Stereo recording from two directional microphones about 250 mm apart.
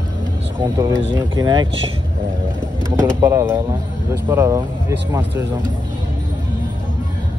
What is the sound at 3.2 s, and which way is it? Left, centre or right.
Speech, centre.